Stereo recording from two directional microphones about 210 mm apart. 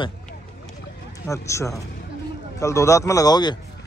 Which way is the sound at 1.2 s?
15° left (ahead or behind).